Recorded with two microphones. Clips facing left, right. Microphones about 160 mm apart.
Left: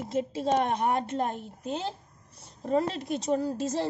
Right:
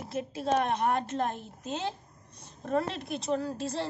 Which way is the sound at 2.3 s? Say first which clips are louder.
Left 3 dB; 15° left (ahead or behind).